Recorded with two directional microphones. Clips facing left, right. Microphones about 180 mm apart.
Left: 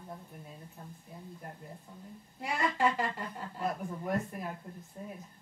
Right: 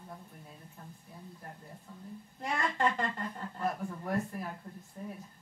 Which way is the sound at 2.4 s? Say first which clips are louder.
Left 1 dB; 10° left (ahead or behind).